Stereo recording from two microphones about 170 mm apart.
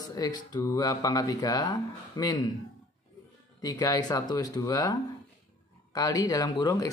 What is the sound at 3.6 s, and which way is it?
Speech, 20° left (ahead or behind).